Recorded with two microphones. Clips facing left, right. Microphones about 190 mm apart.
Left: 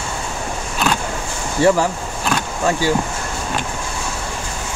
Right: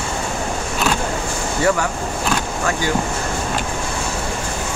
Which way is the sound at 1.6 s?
30° left (ahead or behind).